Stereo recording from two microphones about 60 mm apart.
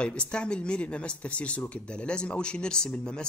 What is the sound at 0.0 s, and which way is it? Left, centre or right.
Speech, centre.